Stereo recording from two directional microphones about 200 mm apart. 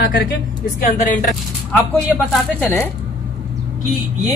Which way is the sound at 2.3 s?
10° left (ahead or behind).